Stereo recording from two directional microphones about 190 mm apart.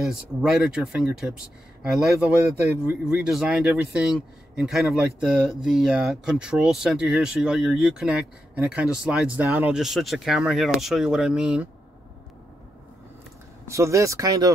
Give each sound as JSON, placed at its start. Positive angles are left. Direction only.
{"t": 0.0, "sound": "speech", "side_deg": 0}
{"t": 13.7, "sound": "speech", "side_deg": -15}